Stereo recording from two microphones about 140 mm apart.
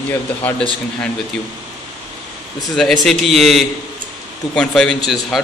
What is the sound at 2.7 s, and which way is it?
A man's voice, centre (ahead or behind).